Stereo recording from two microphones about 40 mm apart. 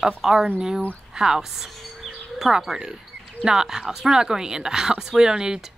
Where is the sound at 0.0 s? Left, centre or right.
Centre.